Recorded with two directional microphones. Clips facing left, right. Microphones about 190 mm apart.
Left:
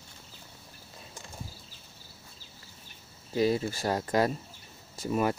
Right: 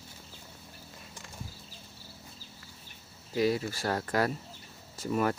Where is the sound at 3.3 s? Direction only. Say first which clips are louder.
Left 2 dB; 25° left (ahead or behind).